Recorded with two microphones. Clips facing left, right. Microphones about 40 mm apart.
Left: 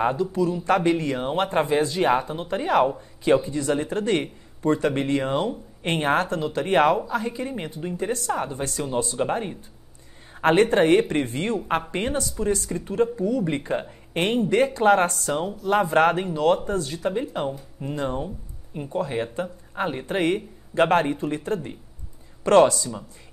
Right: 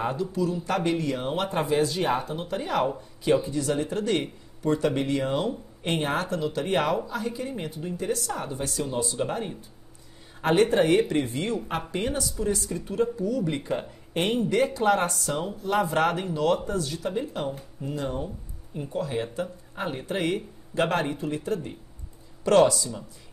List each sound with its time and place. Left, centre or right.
0.0 s speech: left